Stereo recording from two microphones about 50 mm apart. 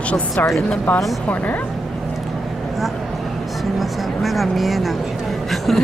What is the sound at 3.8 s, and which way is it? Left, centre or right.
Speech, centre.